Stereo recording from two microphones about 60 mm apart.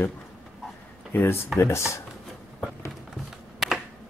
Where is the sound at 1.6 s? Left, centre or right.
Left.